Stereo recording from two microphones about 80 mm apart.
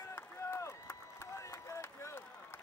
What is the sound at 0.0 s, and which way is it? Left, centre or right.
Run, left.